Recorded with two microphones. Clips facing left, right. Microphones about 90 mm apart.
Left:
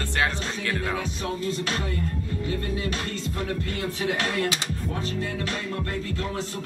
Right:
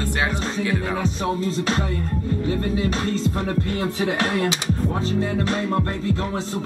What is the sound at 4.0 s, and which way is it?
Speech, 65° right (ahead or behind).